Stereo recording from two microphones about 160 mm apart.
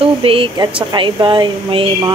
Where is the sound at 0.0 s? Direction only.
35° right (ahead or behind).